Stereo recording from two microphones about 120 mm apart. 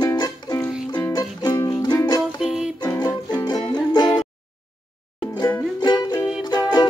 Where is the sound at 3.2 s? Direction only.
35° left (ahead or behind).